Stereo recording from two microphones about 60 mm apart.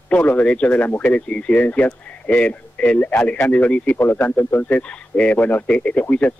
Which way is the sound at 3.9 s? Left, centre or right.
Left.